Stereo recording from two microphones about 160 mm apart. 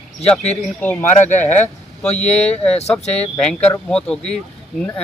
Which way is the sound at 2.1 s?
45° left (ahead or behind).